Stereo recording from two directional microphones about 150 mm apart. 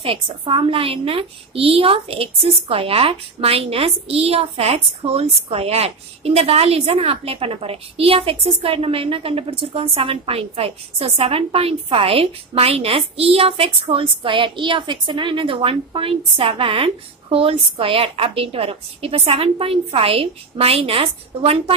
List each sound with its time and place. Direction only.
0.0 s a woman's voice: 35° right (ahead or behind)